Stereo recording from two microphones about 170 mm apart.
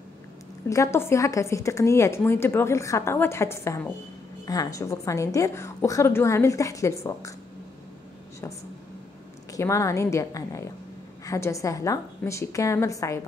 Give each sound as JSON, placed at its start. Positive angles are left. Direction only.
{"t": 0.7, "sound": "a woman's voice", "side_deg": 15}
{"t": 9.5, "sound": "a woman's voice", "side_deg": 15}